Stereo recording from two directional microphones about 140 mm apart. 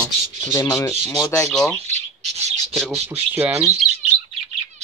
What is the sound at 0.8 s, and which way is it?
Speech, 25° left (ahead or behind).